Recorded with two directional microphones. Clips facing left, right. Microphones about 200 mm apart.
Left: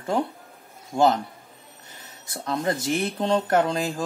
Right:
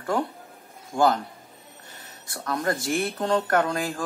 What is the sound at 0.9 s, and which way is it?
Speech, 5° left (ahead or behind).